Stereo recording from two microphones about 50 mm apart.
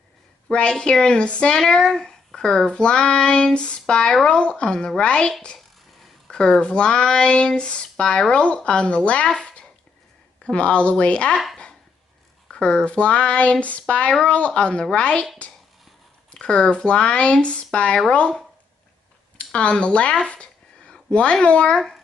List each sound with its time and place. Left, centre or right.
0.5 s child singing: centre
4.4 s speech: left
6.2 s a sound: centre
6.6 s speech: centre
12.4 s speech: centre
16.3 s speech: centre
19.3 s speech: left